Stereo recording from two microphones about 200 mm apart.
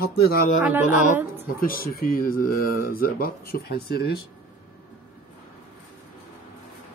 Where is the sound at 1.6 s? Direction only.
45° left (ahead or behind).